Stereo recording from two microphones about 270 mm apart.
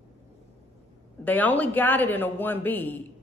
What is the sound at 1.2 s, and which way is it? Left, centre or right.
A woman's voice, centre.